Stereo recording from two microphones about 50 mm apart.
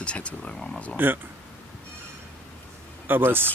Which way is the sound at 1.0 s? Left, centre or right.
Right.